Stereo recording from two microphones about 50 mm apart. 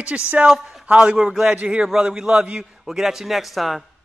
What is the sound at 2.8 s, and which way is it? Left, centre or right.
Speech, centre.